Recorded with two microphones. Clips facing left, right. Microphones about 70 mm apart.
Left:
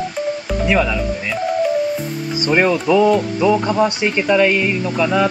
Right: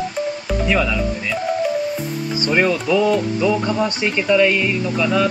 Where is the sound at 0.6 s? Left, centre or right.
Centre.